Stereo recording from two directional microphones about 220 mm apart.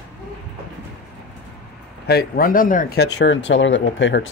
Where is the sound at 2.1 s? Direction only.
45° left (ahead or behind).